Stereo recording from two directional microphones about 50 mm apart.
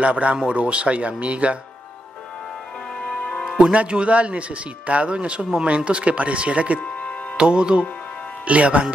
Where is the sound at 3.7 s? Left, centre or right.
Right.